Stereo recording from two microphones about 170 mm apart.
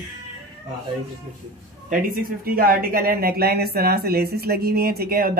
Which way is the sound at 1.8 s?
60° right (ahead or behind).